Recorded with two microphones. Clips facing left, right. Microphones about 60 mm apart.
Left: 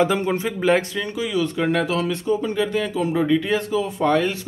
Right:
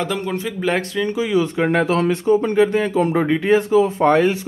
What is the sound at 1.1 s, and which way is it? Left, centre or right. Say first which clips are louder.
Speech: right 3 dB; right.